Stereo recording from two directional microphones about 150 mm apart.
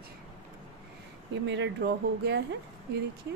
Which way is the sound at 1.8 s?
90° right.